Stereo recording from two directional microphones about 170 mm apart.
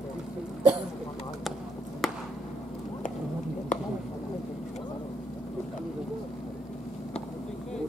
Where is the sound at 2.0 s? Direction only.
Centre (ahead or behind).